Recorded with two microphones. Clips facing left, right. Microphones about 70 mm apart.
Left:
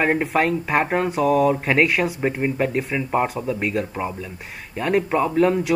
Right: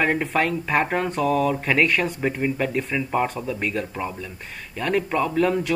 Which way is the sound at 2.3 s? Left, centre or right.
Centre.